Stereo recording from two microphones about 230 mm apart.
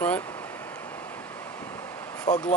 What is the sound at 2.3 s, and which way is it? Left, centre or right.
Speech, left.